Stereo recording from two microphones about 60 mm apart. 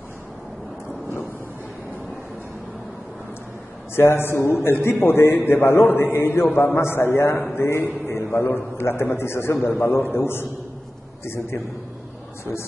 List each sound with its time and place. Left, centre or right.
3.9 s a man's voice: left